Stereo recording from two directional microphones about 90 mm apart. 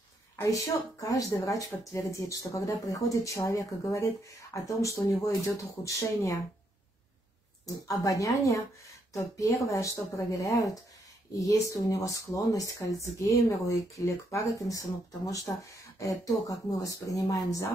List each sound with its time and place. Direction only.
0.4 s speech: 40° left (ahead or behind)
7.6 s speech: 40° left (ahead or behind)